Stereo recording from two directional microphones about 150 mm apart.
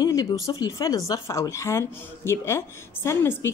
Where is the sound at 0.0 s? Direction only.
25° left (ahead or behind).